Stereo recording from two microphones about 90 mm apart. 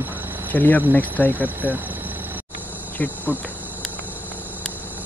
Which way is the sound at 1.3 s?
20° right (ahead or behind).